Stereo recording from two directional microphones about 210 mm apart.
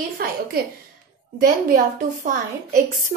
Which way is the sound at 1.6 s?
40° right (ahead or behind).